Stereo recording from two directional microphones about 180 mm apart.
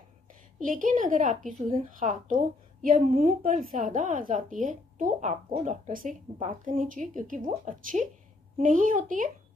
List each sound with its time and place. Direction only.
0.6 s a woman's voice: 50° right (ahead or behind)